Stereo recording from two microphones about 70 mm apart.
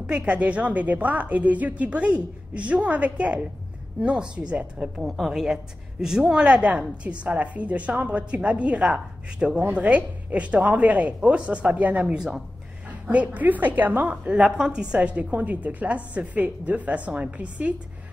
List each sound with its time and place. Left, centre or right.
0.0 s a woman's voice: centre
5.0 s a woman's voice: centre
5.3 s a woman's voice: centre
12.2 s a woman's voice: centre
13.0 s a woman's voice: centre